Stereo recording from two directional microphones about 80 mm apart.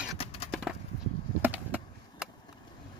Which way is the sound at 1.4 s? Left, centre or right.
Right.